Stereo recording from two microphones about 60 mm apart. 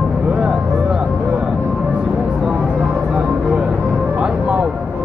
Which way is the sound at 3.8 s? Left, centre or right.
Right.